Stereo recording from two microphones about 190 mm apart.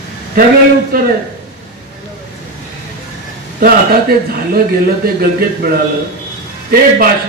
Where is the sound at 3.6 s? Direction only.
50° right (ahead or behind).